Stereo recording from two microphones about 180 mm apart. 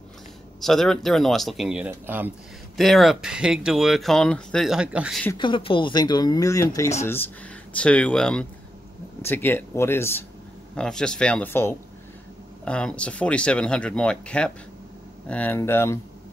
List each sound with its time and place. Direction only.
0.6 s speech: centre (ahead or behind)
2.8 s speech: centre (ahead or behind)
5.4 s speech: 30° left (ahead or behind)